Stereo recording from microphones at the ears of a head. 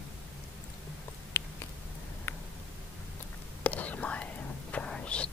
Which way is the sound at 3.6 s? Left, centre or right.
Left.